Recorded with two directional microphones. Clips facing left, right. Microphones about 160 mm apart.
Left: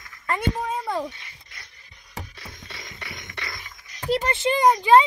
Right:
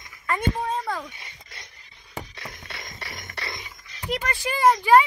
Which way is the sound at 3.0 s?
40° right (ahead or behind).